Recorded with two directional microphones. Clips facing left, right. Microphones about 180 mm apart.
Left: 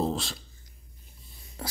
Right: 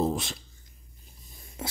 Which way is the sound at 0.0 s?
20° right (ahead or behind).